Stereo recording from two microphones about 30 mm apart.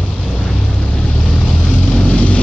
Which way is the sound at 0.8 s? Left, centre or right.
Left.